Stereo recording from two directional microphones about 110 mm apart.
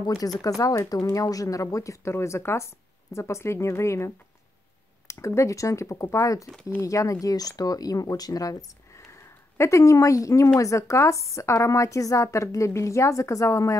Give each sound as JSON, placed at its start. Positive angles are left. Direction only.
{"t": 0.4, "sound": "a woman's voice", "side_deg": 30}